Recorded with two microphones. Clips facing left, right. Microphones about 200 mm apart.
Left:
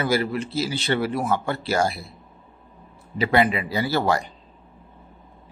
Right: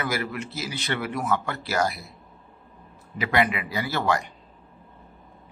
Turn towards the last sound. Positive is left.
turn(degrees=30)  # may be behind; listen again after turning